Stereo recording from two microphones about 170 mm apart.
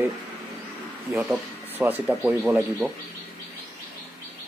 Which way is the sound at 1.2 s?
10° right (ahead or behind).